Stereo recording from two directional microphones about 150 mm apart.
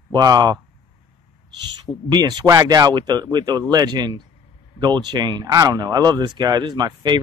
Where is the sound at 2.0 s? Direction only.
30° right (ahead or behind).